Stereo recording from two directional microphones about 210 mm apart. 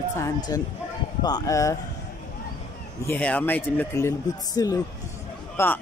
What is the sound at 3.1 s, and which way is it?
A man's voice, 5° left (ahead or behind).